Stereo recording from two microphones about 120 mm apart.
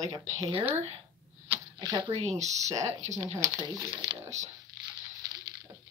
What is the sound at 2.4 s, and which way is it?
Speech, 75° right (ahead or behind).